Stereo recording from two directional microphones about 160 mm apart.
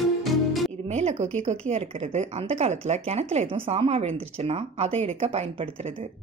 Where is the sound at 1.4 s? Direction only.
40° right (ahead or behind).